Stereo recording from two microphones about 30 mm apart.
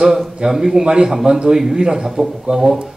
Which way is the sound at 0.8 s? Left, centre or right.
Right.